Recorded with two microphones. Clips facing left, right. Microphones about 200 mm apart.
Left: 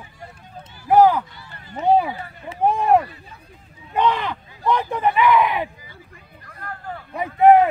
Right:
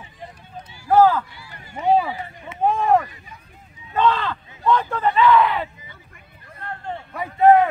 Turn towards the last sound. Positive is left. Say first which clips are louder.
# left 1 dB
turn(degrees=20)  # may be behind; listen again after turning